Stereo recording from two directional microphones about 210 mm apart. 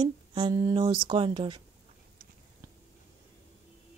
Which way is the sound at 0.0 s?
20° right (ahead or behind).